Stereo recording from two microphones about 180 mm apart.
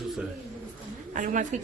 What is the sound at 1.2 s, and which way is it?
Speech, 45° right (ahead or behind).